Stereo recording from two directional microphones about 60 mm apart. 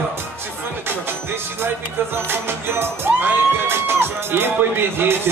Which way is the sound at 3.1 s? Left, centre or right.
Right.